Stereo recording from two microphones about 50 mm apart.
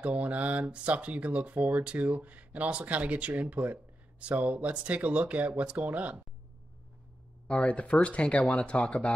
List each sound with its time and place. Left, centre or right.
0.0 s speech: right
7.4 s speech: left